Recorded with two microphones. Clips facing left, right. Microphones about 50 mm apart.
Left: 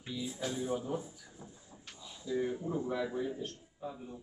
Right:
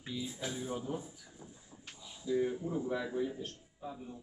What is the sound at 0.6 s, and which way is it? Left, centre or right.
Speech, centre.